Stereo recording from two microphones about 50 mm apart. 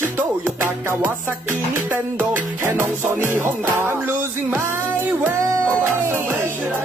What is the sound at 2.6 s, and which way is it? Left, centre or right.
Music, right.